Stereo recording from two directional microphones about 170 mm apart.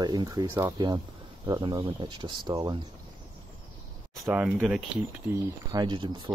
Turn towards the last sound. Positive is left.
turn(degrees=-25)  # may be behind; listen again after turning